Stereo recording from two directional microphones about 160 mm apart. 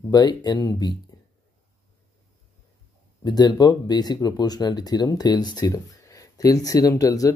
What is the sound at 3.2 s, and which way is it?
Speech, 25° left (ahead or behind).